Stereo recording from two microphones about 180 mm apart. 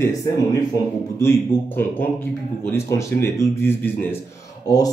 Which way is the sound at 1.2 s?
10° left (ahead or behind).